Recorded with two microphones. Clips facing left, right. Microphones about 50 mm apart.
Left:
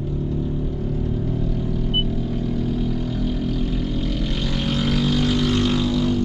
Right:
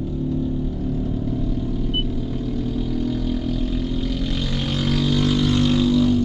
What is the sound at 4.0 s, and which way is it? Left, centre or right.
Vehicle, left.